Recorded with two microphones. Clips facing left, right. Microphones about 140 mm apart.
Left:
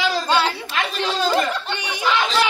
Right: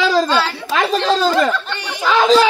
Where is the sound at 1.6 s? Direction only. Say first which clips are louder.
Right 1 dB; 15° left (ahead or behind).